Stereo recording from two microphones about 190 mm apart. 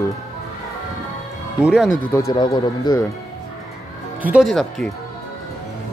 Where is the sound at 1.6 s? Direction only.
5° right (ahead or behind).